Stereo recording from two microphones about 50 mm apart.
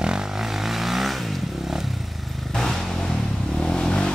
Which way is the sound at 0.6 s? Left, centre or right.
Centre.